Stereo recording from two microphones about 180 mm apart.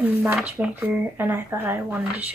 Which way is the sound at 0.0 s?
10° right (ahead or behind).